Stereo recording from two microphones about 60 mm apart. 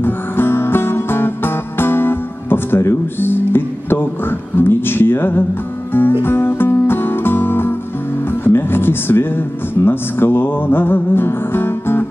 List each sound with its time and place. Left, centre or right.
0.0 s music: left
8.3 s speech: left